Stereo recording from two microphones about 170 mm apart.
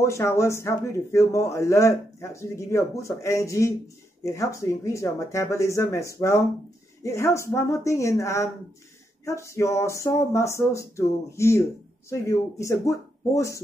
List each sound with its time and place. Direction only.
0.0 s speech: 15° left (ahead or behind)